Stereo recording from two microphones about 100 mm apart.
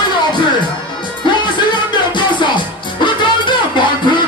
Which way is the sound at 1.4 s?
50° left (ahead or behind).